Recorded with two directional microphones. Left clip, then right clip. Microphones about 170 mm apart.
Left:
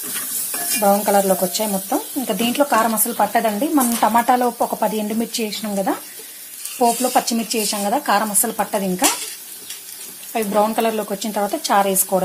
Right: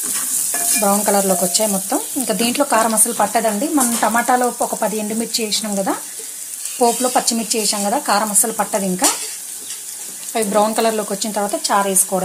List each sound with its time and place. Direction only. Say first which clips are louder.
0.7 s stir: left 1 dB; centre (ahead or behind)
4.8 s speech: even; 15° left (ahead or behind)
6.8 s stir: right 1 dB; centre (ahead or behind)
7.2 s speech: right 2 dB; 10° left (ahead or behind)
10.3 s stir: right 2 dB; centre (ahead or behind)
11.2 s speech: left 1 dB; 10° left (ahead or behind)